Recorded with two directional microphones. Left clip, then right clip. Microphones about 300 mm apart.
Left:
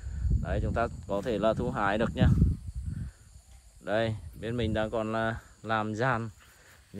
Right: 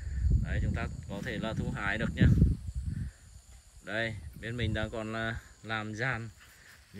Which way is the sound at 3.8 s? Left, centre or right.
Centre.